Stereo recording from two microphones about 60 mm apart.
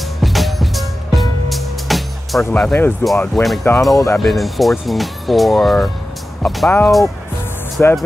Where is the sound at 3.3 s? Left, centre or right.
Centre.